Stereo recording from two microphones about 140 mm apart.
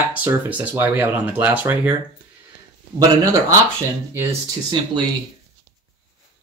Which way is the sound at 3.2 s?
25° right (ahead or behind).